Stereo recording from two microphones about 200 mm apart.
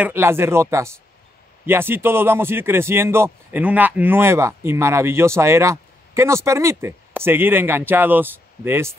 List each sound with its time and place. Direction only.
0.0 s a man's voice: 10° right (ahead or behind)